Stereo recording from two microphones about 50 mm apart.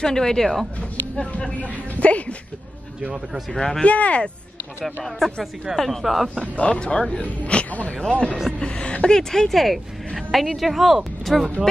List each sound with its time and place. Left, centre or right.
0.0 s speech: centre
1.1 s speech: left
3.5 s speech: centre
3.8 s speech: left
4.8 s a woman's voice: centre
6.6 s a woman's voice: left; by 11.5 s centre